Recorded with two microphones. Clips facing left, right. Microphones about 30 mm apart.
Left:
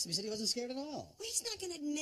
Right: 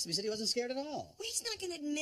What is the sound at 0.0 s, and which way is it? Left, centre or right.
A woman's voice, centre.